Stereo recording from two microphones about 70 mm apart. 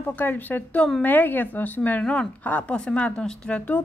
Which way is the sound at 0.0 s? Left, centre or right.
Left.